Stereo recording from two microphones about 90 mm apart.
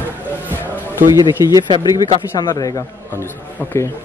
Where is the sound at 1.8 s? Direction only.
50° left (ahead or behind).